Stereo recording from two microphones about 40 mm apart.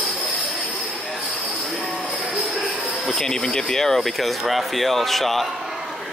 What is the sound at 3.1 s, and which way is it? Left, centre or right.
Speech, centre.